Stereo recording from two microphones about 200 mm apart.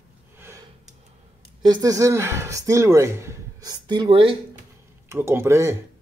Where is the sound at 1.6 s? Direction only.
20° right (ahead or behind).